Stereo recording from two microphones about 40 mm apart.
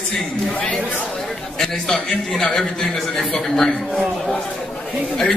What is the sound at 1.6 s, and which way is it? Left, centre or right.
A man's voice, centre.